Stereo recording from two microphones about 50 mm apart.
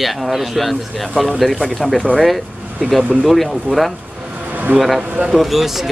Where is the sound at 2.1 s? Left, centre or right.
Right.